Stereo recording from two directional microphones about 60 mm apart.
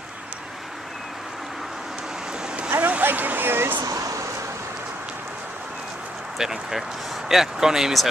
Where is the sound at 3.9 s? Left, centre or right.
Right.